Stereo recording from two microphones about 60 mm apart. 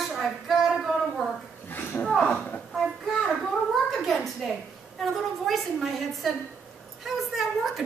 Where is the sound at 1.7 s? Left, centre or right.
Left.